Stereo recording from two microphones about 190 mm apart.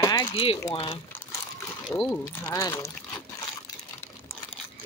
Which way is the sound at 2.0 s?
10° left (ahead or behind).